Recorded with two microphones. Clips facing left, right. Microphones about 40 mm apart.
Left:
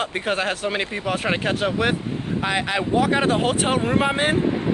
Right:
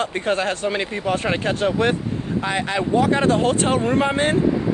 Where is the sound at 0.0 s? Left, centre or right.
Centre.